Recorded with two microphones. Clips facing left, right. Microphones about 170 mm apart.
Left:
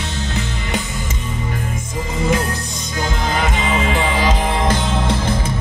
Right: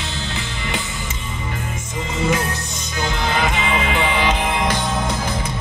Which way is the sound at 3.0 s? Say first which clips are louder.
Even; 40° left (ahead or behind).